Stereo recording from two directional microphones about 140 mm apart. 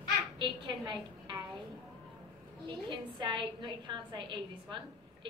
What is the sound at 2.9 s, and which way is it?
A woman's voice, 35° right (ahead or behind).